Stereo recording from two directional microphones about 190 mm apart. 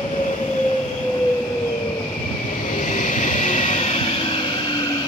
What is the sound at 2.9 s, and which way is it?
Vehicle, 40° left (ahead or behind).